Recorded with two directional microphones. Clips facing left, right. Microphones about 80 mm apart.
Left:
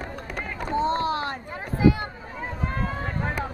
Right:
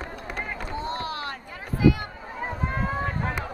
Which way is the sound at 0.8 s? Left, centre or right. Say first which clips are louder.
Left 9 dB; left.